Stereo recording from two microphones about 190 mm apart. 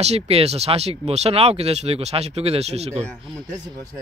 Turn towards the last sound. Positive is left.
turn(degrees=-25)  # may be behind; listen again after turning